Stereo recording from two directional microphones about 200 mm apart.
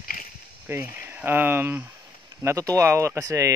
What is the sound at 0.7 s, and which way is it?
Speech, 10° right (ahead or behind).